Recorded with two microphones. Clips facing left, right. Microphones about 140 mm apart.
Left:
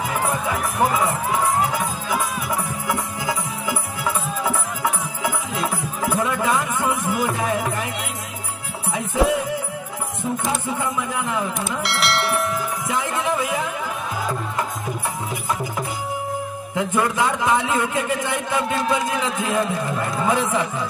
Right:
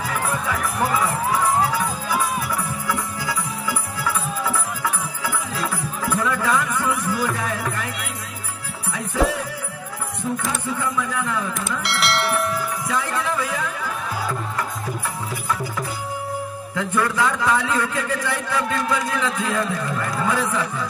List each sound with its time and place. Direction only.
0.2 s music: 20° left (ahead or behind)
10.3 s speech: 20° left (ahead or behind)
11.8 s bell: centre (ahead or behind)
12.8 s music: 20° left (ahead or behind)
16.7 s a man's voice: 20° left (ahead or behind)